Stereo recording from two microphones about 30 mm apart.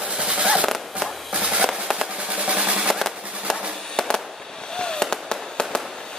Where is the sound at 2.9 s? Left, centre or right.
Centre.